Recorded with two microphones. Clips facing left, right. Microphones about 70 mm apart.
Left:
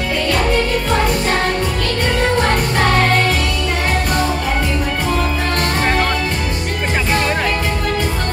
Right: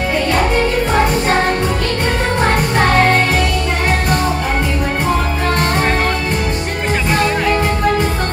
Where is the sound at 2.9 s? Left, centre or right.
Right.